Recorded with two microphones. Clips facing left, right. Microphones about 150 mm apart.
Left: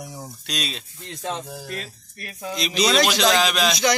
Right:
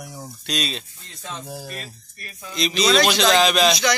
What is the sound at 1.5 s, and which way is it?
Speech, 10° right (ahead or behind).